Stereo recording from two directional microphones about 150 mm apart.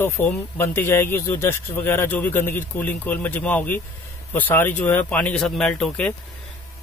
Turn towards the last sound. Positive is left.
turn(degrees=10)  # may be behind; listen again after turning